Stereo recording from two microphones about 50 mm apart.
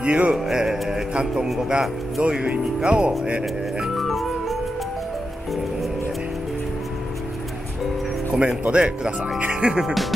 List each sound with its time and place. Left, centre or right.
0.0 s speech: right
0.4 s music: centre
1.6 s speech: centre
3.9 s music: centre
8.3 s speech: right
9.5 s music: centre